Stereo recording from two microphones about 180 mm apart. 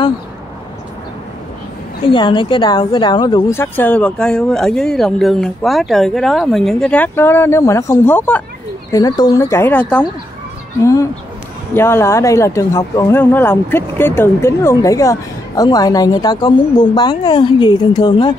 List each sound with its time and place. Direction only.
2.0 s a woman's voice: 25° left (ahead or behind); by 8.5 s 10° left (ahead or behind)
8.9 s a woman's voice: 20° left (ahead or behind)